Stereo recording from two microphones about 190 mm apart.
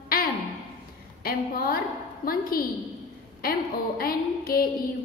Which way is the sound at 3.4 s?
50° left (ahead or behind).